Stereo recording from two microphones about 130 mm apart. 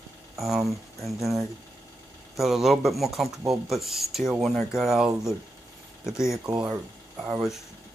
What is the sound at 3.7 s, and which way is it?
Speech, centre (ahead or behind).